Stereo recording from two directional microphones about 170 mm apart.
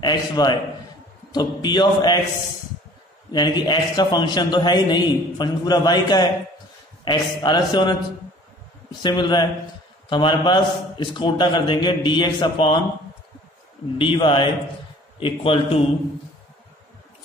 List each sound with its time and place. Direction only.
0.0 s a man's voice: 25° left (ahead or behind)
3.3 s a man's voice: 25° left (ahead or behind)
9.0 s a man's voice: 25° left (ahead or behind)
13.9 s a man's voice: 30° left (ahead or behind)